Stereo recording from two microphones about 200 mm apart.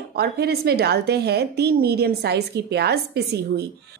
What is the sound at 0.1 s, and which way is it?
A woman's voice, 50° right (ahead or behind).